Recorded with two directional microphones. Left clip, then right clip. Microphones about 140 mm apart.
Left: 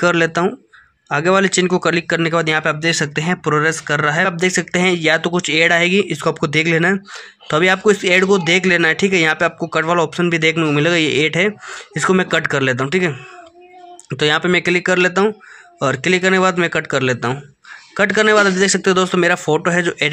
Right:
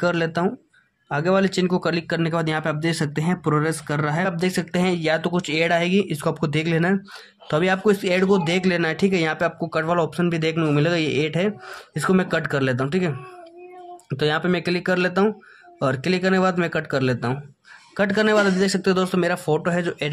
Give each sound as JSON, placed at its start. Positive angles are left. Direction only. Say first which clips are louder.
{"t": 0.0, "sound": "speech", "louder": "left 7 dB", "side_deg": 15}